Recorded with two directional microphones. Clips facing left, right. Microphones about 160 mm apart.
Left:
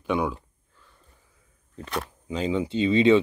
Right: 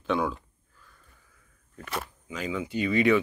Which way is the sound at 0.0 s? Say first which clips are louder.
Left 2 dB; 15° left (ahead or behind).